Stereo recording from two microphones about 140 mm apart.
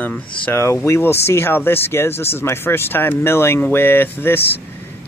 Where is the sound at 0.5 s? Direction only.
20° left (ahead or behind).